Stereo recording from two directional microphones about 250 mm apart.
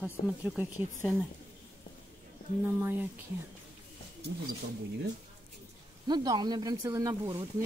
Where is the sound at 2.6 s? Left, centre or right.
Centre.